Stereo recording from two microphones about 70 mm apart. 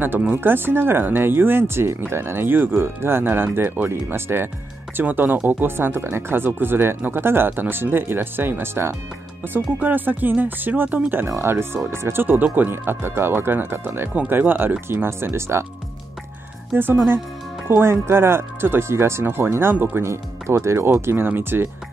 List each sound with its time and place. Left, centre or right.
0.3 s speech: right
11.2 s speech: right
16.7 s speech: right
20.1 s speech: right